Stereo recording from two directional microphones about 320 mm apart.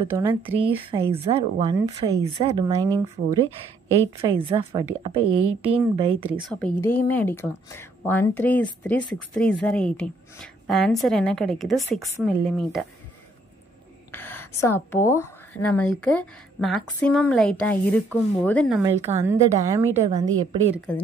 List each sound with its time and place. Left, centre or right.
0.0 s a woman's voice: centre
6.5 s speech: centre
14.1 s a sound: centre
14.6 s a woman's voice: centre
19.1 s a woman's voice: centre
20.1 s a woman's voice: centre
20.7 s speech: centre